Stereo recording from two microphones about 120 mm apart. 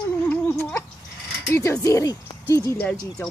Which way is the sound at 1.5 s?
25° left (ahead or behind).